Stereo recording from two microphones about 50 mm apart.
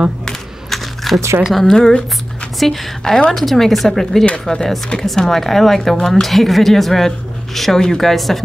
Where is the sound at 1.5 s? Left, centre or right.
Centre.